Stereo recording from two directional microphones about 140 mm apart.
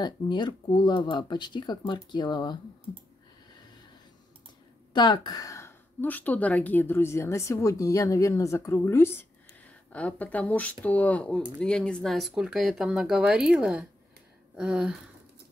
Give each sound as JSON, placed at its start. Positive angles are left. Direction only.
{"t": 0.0, "sound": "speech", "side_deg": 30}
{"t": 4.9, "sound": "a woman's voice", "side_deg": 30}